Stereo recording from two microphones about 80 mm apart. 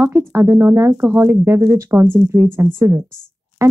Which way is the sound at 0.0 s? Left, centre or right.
Right.